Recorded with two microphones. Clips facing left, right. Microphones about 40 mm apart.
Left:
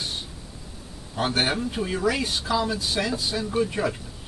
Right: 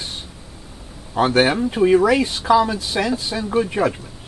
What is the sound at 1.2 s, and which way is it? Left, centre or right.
Speech, right.